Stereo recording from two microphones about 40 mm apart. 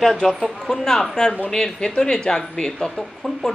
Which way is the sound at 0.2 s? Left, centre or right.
Centre.